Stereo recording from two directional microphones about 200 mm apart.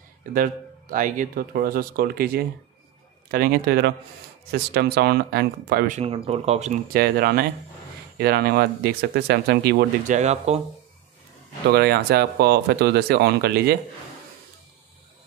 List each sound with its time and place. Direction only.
0.3 s speech: 45° right (ahead or behind)
5.9 s speech: 30° right (ahead or behind)
6.9 s speech: 50° right (ahead or behind)
10.1 s speech: 35° right (ahead or behind)
11.7 s speech: 55° right (ahead or behind)